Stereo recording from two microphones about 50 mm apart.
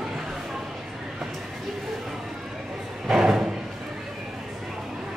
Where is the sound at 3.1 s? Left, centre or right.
Centre.